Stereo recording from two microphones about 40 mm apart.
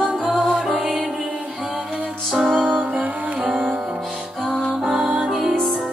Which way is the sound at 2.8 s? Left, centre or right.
Right.